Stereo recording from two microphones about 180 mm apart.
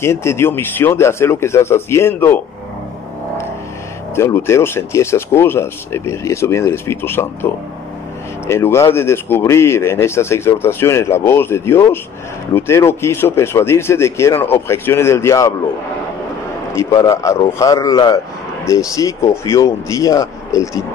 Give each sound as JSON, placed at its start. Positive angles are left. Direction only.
{"t": 0.0, "sound": "speech", "side_deg": 15}
{"t": 4.1, "sound": "speech", "side_deg": 15}
{"t": 8.5, "sound": "speech", "side_deg": 15}
{"t": 16.7, "sound": "speech", "side_deg": 20}